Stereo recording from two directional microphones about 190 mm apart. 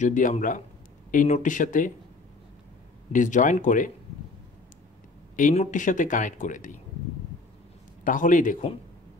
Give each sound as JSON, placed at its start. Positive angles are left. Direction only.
{"t": 0.0, "sound": "speech", "side_deg": 40}
{"t": 3.1, "sound": "speech", "side_deg": 40}
{"t": 5.3, "sound": "speech", "side_deg": 40}
{"t": 8.0, "sound": "speech", "side_deg": 45}